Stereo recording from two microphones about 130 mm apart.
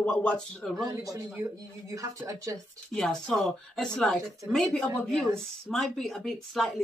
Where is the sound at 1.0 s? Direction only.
25° right (ahead or behind).